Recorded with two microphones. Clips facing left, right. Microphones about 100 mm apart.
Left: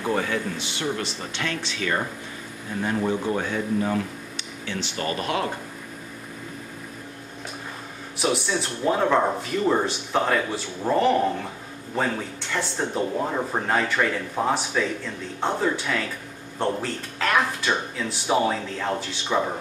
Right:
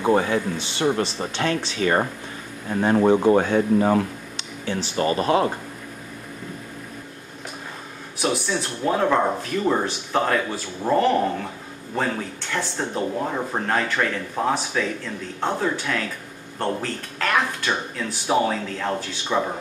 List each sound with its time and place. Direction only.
0.0 s speech: 25° right (ahead or behind)
8.2 s speech: centre (ahead or behind)